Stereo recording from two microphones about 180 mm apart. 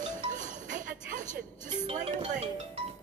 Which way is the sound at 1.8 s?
35° right (ahead or behind).